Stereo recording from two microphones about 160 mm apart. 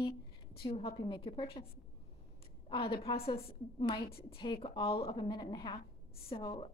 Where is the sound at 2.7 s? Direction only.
35° left (ahead or behind).